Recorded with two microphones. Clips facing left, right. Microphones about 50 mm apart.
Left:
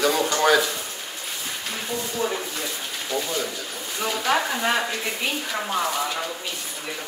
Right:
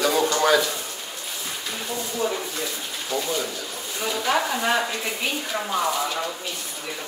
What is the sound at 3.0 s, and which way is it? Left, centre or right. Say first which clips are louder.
Speech: right 1 dB; centre.